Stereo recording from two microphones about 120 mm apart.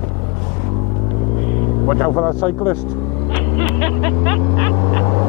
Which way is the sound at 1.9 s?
15° left (ahead or behind).